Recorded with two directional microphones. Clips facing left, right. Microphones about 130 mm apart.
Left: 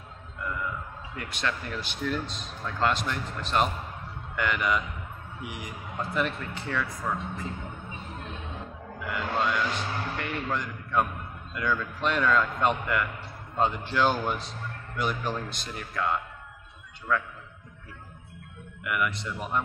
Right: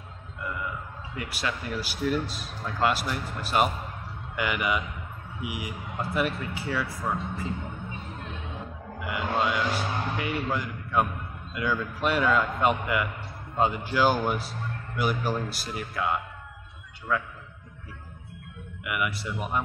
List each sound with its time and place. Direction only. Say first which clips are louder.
1.1 s a man's voice: even; 5° right (ahead or behind)
9.0 s a man's voice: right 1 dB; 5° right (ahead or behind)
18.9 s speech: left 1 dB; 5° right (ahead or behind)